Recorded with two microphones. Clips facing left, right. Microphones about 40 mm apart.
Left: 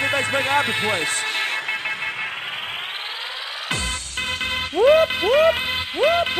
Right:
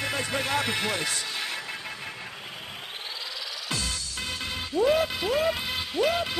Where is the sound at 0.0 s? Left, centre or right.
Left.